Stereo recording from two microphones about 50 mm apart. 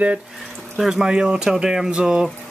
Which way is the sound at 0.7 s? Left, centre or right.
Centre.